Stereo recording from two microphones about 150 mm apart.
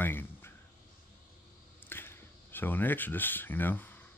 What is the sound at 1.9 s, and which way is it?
Speech, 15° left (ahead or behind).